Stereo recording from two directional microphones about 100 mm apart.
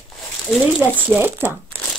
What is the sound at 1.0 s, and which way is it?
Speech, 20° right (ahead or behind).